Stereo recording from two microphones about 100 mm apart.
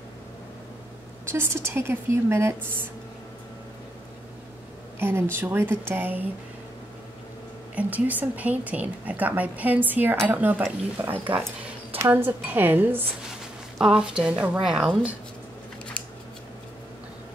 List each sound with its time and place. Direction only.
1.3 s a woman's voice: 25° right (ahead or behind)
4.9 s a woman's voice: 20° right (ahead or behind)
7.7 s a woman's voice: 15° right (ahead or behind)
13.7 s a woman's voice: 5° right (ahead or behind)